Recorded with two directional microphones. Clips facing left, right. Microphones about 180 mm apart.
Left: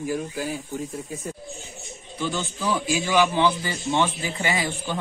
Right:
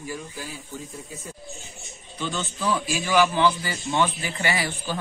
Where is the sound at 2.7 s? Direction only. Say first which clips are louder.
Left 1 dB; 15° left (ahead or behind).